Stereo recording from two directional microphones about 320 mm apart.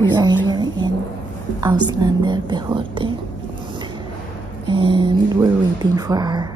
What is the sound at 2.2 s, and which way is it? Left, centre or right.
Speech, centre.